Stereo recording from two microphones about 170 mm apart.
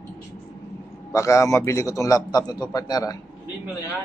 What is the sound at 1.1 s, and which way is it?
A man's voice, 20° left (ahead or behind).